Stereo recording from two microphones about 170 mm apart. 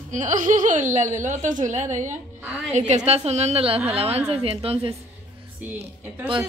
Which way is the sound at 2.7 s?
45° right (ahead or behind).